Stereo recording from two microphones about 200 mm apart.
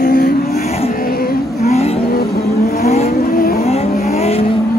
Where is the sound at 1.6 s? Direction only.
35° left (ahead or behind).